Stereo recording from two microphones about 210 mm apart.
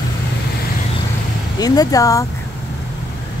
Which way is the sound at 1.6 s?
15° left (ahead or behind).